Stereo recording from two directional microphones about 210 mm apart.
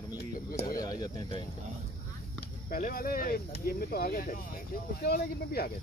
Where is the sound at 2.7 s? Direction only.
45° left (ahead or behind).